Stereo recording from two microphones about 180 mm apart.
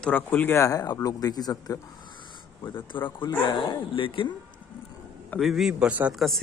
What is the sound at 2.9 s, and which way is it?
Speech, 25° left (ahead or behind).